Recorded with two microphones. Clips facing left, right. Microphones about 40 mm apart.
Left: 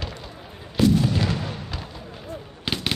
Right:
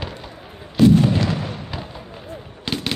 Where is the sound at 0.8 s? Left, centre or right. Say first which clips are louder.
Right 6 dB; right.